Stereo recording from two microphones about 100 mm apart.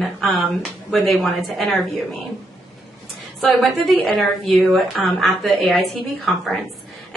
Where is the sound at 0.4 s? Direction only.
15° right (ahead or behind).